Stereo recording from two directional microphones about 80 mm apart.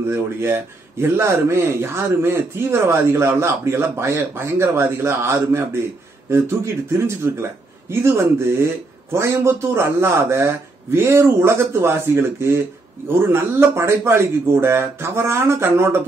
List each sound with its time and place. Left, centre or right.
0.1 s speech: right